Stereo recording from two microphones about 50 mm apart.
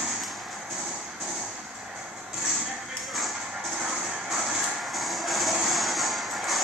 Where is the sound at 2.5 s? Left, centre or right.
Centre.